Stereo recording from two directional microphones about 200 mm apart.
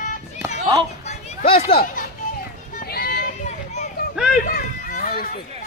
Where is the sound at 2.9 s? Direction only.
50° left (ahead or behind).